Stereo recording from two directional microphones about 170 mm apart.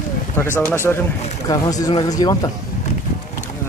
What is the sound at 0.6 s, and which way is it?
Speech, 15° left (ahead or behind).